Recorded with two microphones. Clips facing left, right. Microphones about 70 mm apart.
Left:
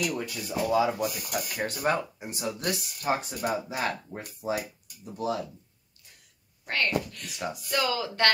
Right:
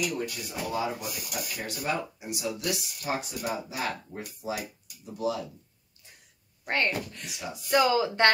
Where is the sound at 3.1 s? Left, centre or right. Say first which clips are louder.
Left 4 dB; left.